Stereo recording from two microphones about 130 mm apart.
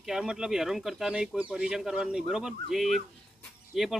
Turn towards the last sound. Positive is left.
turn(degrees=0)  # may be behind; listen again after turning